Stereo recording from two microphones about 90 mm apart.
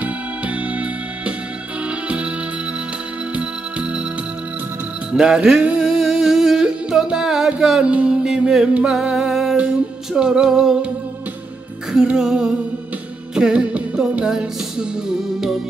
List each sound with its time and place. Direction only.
5.1 s music: 5° right (ahead or behind)
11.9 s music: 5° right (ahead or behind)